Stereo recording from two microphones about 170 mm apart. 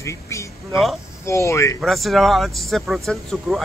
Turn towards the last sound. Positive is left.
turn(degrees=0)  # may be behind; listen again after turning